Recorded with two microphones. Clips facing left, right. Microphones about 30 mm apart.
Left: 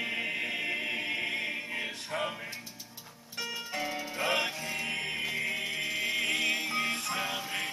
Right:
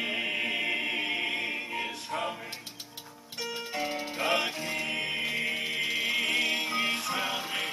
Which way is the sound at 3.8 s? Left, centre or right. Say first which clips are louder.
Right 2 dB; right.